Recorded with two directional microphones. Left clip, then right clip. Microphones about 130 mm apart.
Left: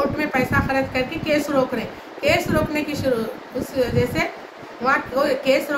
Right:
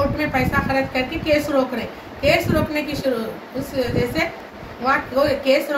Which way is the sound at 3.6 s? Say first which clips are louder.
Left 1 dB; 15° left (ahead or behind).